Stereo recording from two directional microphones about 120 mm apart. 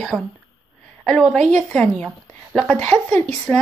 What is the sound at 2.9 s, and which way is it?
Speech, 20° left (ahead or behind).